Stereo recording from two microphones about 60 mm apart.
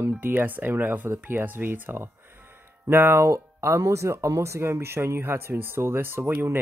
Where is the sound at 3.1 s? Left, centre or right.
Right.